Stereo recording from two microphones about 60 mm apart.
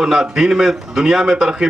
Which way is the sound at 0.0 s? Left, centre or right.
Centre.